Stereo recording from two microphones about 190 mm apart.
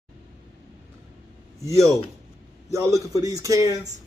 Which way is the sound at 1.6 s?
15° right (ahead or behind).